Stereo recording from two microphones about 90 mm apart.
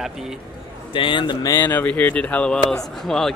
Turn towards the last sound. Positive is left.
turn(degrees=5)  # may be behind; listen again after turning